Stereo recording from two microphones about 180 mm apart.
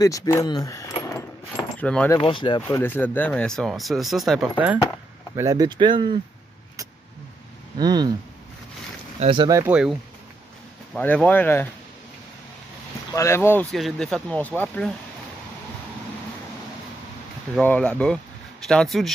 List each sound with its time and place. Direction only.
0.0 s speech: 20° left (ahead or behind)
1.8 s speech: 5° left (ahead or behind)
2.1 s speech: 25° left (ahead or behind)
2.7 s speech: 10° left (ahead or behind); by 4.7 s 5° right (ahead or behind)
5.3 s speech: 20° right (ahead or behind)
7.7 s speech: 25° right (ahead or behind)
9.2 s speech: 25° right (ahead or behind)
9.6 s speech: 5° right (ahead or behind)
11.0 s speech: 10° left (ahead or behind)
13.1 s speech: 15° left (ahead or behind)
13.7 s speech: centre (ahead or behind)
17.6 s speech: 5° left (ahead or behind)